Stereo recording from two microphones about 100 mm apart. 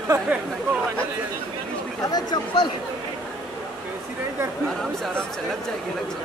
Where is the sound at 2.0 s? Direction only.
40° left (ahead or behind).